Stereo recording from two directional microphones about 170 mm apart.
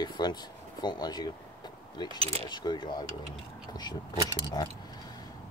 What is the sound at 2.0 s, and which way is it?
Speech, 35° right (ahead or behind).